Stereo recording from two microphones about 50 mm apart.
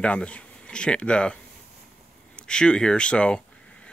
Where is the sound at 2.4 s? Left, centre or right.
Centre.